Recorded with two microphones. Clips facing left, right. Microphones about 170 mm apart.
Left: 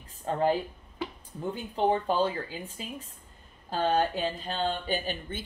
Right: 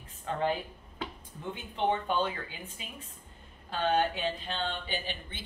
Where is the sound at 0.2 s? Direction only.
35° left (ahead or behind).